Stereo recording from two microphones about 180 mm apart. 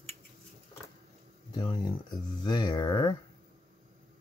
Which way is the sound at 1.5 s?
25° left (ahead or behind).